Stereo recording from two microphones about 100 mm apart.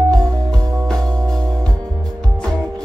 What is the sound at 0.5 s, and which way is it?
Music, 35° right (ahead or behind).